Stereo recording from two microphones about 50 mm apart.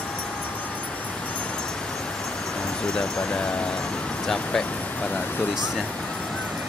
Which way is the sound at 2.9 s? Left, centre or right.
Centre.